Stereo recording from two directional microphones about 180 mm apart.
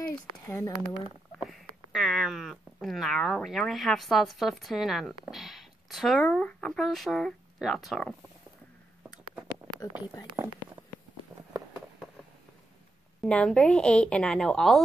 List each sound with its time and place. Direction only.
0.1 s speech: 15° left (ahead or behind)
1.4 s speech: centre (ahead or behind)
10.4 s speech: 15° right (ahead or behind)
13.2 s a woman's voice: 5° left (ahead or behind)